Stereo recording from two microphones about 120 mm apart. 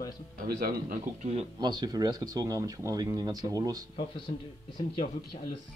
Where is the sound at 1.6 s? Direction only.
35° right (ahead or behind).